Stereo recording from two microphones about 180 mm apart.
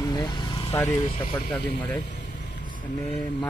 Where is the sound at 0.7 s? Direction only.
15° left (ahead or behind).